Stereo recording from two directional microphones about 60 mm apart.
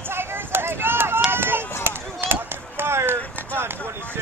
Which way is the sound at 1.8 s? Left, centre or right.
Right.